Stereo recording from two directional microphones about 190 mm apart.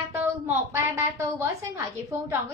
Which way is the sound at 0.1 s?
10° right (ahead or behind).